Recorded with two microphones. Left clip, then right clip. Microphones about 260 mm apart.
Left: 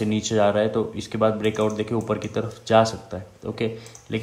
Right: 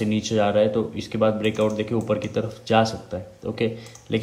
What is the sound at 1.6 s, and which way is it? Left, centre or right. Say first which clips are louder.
Speech: right 1 dB; centre.